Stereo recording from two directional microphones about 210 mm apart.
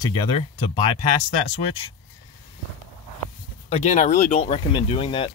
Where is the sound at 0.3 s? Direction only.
25° left (ahead or behind).